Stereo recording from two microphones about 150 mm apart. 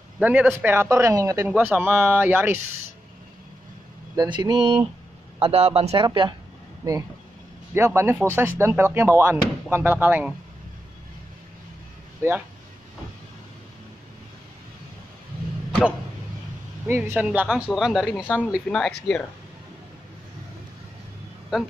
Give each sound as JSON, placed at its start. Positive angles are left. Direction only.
{"t": 0.2, "sound": "speech", "side_deg": -10}
{"t": 1.5, "sound": "speech", "side_deg": -10}
{"t": 4.2, "sound": "speech", "side_deg": -25}
{"t": 5.4, "sound": "speech", "side_deg": -40}
{"t": 6.0, "sound": "speech", "side_deg": -30}
{"t": 12.2, "sound": "speech", "side_deg": -15}
{"t": 16.8, "sound": "speech", "side_deg": -15}